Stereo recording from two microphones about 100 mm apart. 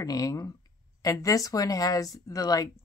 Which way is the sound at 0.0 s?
35° left (ahead or behind).